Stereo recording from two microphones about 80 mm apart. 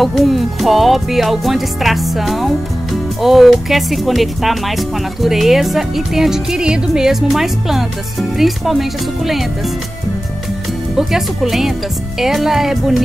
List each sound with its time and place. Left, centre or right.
0.0 s music: centre
11.0 s music: centre